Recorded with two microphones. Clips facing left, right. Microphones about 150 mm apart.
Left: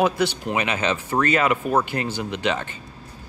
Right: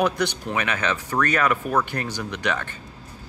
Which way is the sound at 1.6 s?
Centre (ahead or behind).